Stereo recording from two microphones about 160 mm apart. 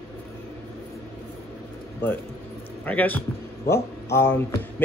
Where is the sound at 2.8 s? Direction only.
10° left (ahead or behind).